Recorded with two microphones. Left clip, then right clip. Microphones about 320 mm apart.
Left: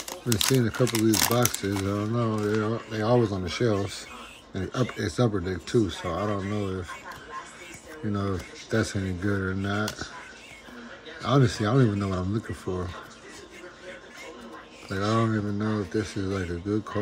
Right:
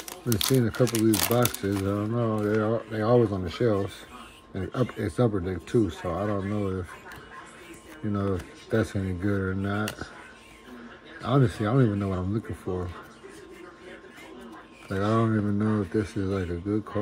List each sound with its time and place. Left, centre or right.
0.4 s speech: centre
8.1 s speech: centre
11.2 s speech: centre
14.9 s speech: centre